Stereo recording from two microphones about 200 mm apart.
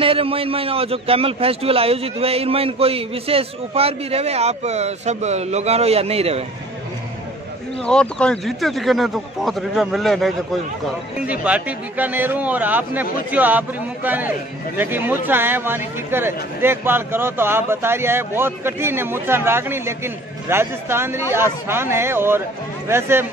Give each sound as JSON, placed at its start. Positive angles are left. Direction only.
{"t": 0.0, "sound": "a man's voice", "side_deg": -25}
{"t": 7.8, "sound": "speech", "side_deg": 5}